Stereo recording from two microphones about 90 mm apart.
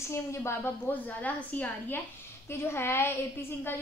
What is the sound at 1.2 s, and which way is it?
Speech, 15° left (ahead or behind).